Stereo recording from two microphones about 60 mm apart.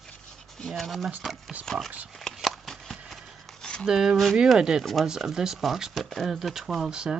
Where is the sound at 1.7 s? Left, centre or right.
Centre.